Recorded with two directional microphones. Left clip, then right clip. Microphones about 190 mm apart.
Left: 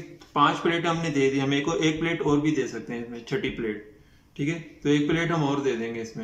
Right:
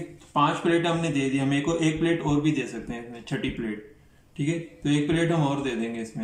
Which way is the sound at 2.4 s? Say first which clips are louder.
Left 1 dB; 10° right (ahead or behind).